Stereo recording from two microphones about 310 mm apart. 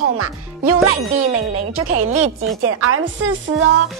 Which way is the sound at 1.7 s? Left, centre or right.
Right.